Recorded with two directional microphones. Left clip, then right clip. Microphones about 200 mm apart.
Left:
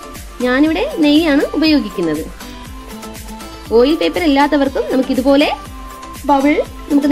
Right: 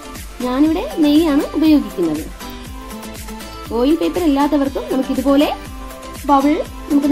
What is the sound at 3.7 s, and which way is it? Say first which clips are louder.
Speech: left 5 dB; 10° left (ahead or behind).